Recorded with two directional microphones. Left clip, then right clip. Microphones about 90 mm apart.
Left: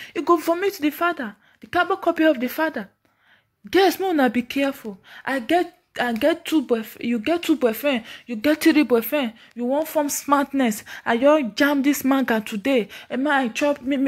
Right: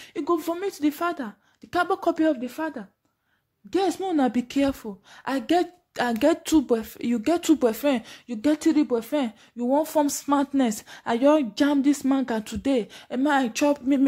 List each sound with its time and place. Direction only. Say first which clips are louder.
0.1 s speech: left 6 dB; 10° left (ahead or behind)
0.8 s speech: left 4 dB; 20° right (ahead or behind)
2.4 s speech: left 7 dB; 25° left (ahead or behind)
3.7 s speech: left 6 dB; 10° left (ahead or behind)
4.3 s speech: left 2 dB; 35° right (ahead or behind)
5.5 s speech: left 2 dB; 55° right (ahead or behind)
7.6 s speech: left 2 dB; 40° right (ahead or behind)
8.5 s speech: left 6 dB; 10° left (ahead or behind)
10.0 s a woman's voice: left 4 dB; 20° right (ahead or behind)
11.5 s speech: left 3 dB; 10° right (ahead or behind)
12.4 s a woman's voice: left 4 dB; 20° right (ahead or behind)
13.2 s a woman's voice: left 2 dB; 25° right (ahead or behind)
13.5 s speech: left 1 dB; 45° right (ahead or behind)